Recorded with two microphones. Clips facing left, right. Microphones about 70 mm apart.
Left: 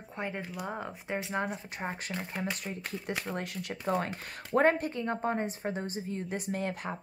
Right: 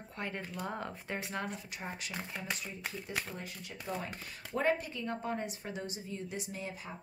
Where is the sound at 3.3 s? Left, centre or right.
Left.